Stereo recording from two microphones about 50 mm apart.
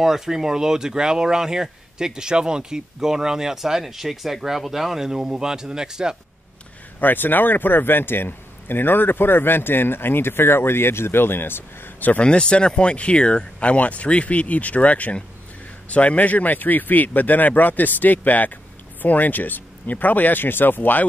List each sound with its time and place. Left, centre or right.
0.0 s speech: centre
7.0 s a man's voice: left
12.2 s speech: centre; by 21.0 s left